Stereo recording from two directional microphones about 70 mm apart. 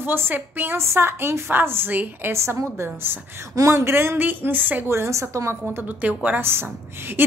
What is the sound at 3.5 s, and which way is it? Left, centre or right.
Speech, right.